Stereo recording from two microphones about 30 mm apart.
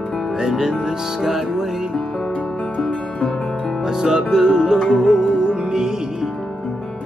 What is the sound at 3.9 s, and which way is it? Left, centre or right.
Music, centre.